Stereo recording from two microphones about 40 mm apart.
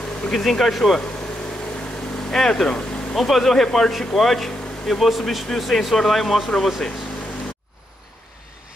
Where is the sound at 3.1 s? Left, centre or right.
Centre.